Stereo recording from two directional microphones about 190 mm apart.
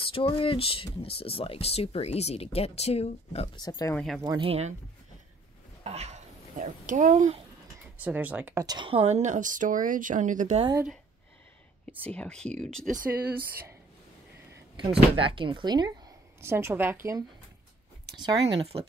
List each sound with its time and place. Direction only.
0.1 s speech: 30° left (ahead or behind)
3.5 s speech: 20° left (ahead or behind)
3.9 s speech: centre (ahead or behind)
4.2 s speech: 25° right (ahead or behind)
5.9 s a child's voice: 35° right (ahead or behind)
8.0 s speech: 10° right (ahead or behind); by 10.6 s 40° right (ahead or behind)
12.0 s speech: 5° left (ahead or behind)
12.8 s speech: 50° right (ahead or behind)
14.8 s speech: 30° right (ahead or behind)